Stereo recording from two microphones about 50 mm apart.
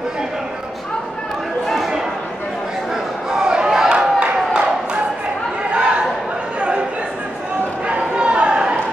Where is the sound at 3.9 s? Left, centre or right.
Right.